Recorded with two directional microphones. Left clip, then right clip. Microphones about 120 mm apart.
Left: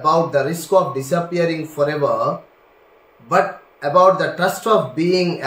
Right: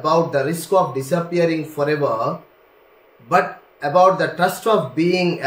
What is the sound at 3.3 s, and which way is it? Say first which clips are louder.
Speech: left 1 dB; 15° right (ahead or behind).